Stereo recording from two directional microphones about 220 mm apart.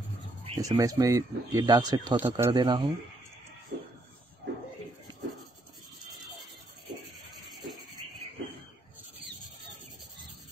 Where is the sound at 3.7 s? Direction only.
45° right (ahead or behind).